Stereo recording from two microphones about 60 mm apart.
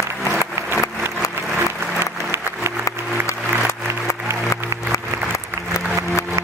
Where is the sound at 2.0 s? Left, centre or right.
Right.